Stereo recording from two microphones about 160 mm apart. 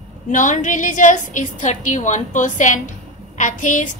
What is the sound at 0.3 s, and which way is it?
A woman's voice, 50° left (ahead or behind).